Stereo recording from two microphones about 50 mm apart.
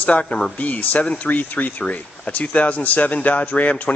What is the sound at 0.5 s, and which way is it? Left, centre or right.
Speech, left.